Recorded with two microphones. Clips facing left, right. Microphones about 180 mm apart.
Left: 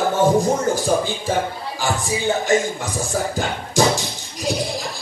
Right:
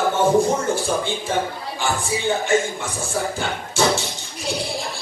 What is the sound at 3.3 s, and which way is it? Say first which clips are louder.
Music: left 3 dB; 40° left (ahead or behind).